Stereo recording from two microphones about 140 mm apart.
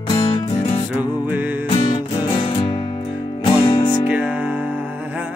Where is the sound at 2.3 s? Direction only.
35° left (ahead or behind).